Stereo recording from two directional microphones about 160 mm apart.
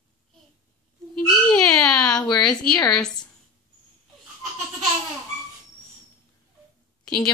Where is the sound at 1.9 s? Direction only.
25° left (ahead or behind).